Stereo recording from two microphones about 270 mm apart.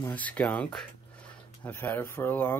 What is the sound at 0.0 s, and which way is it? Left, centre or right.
Speech, centre.